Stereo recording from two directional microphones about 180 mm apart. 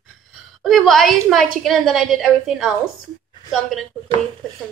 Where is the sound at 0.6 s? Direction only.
Centre (ahead or behind).